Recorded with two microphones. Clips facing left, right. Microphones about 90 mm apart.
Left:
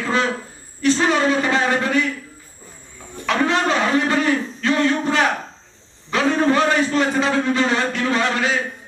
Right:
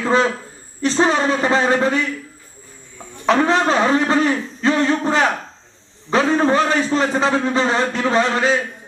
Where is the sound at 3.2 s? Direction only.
30° right (ahead or behind).